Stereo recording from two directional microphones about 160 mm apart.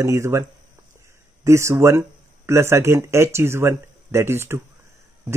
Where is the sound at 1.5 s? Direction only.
20° right (ahead or behind).